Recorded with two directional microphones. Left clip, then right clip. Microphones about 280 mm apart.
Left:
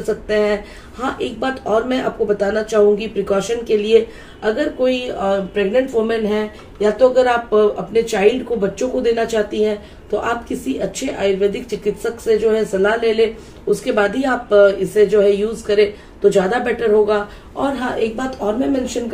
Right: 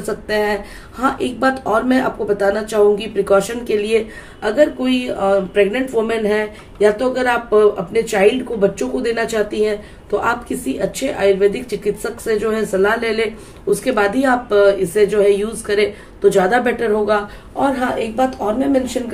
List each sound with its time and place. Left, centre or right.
0.3 s speech: right